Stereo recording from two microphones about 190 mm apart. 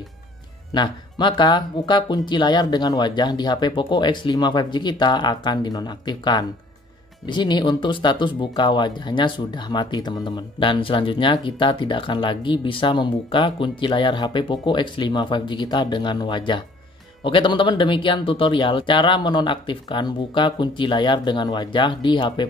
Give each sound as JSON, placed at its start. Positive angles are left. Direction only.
{"t": 0.7, "sound": "speech", "side_deg": 25}